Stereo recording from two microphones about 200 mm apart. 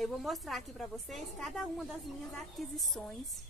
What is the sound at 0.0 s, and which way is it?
A woman's voice, centre (ahead or behind).